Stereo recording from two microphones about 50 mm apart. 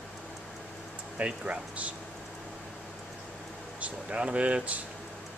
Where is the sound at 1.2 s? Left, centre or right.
Right.